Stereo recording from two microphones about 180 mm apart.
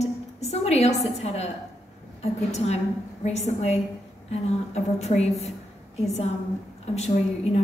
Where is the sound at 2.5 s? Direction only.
35° left (ahead or behind).